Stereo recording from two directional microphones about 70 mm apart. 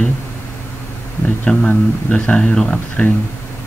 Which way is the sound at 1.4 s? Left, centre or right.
Centre.